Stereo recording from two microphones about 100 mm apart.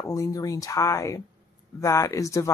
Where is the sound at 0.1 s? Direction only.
35° left (ahead or behind).